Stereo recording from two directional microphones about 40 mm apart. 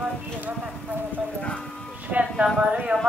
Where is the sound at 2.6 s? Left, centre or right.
Right.